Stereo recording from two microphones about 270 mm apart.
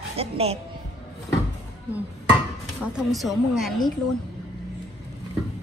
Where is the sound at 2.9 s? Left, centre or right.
Centre.